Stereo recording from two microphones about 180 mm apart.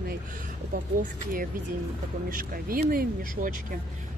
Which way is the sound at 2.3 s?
50° right (ahead or behind).